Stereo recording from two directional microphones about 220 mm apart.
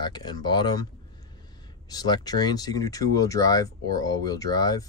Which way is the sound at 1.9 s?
20° left (ahead or behind).